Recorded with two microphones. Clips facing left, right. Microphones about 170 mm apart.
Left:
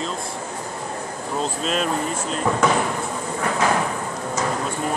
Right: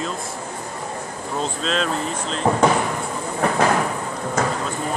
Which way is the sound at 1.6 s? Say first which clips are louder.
Right 1 dB; 5° left (ahead or behind).